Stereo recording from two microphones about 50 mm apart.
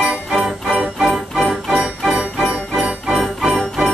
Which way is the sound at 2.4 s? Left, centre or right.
Centre.